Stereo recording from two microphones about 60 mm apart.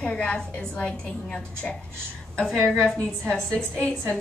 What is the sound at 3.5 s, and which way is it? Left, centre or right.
Speech, left.